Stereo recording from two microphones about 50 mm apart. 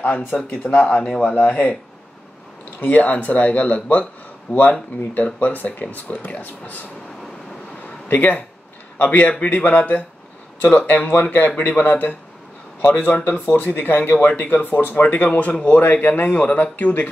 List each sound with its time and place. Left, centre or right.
0.7 s speech: left
2.8 s speech: left
8.1 s a man's voice: left